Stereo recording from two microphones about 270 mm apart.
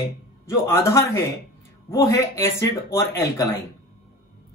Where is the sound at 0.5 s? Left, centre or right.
Centre.